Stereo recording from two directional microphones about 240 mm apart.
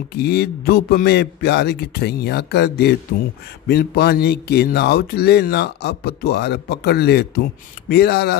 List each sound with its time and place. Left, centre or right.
0.1 s speech: left